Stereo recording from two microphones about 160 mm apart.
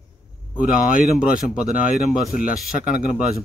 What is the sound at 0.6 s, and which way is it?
Speech, 60° left (ahead or behind).